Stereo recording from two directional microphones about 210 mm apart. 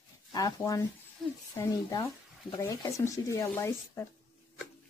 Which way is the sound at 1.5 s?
15° left (ahead or behind).